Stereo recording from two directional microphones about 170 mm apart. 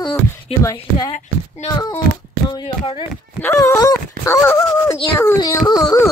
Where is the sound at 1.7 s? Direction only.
25° left (ahead or behind).